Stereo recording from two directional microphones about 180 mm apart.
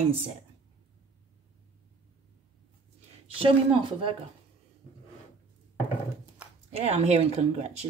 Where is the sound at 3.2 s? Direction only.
30° right (ahead or behind).